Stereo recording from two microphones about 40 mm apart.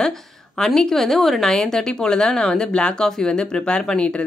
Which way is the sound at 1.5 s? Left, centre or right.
Centre.